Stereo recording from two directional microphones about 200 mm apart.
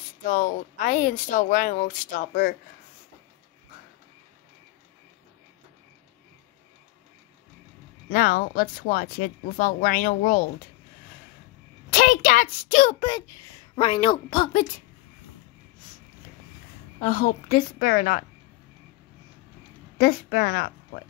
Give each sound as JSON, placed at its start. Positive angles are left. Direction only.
{"t": 0.2, "sound": "speech", "side_deg": 40}
{"t": 8.1, "sound": "speech", "side_deg": 45}
{"t": 11.9, "sound": "a woman's voice", "side_deg": 45}
{"t": 17.0, "sound": "speech", "side_deg": 40}
{"t": 20.0, "sound": "speech", "side_deg": 50}